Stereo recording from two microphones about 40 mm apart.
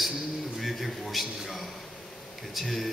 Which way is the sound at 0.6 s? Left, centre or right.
Centre.